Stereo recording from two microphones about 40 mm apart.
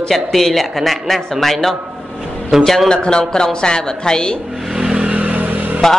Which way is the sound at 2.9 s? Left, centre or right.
Left.